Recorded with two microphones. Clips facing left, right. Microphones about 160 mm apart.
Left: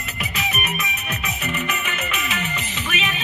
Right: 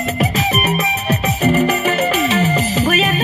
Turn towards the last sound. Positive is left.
turn(degrees=-40)  # may be behind; listen again after turning